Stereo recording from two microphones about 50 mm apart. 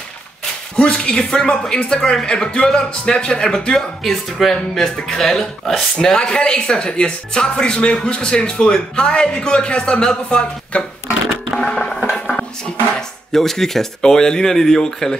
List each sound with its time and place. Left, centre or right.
0.7 s a man's voice: centre
11.5 s a sound: centre
13.3 s a man's voice: centre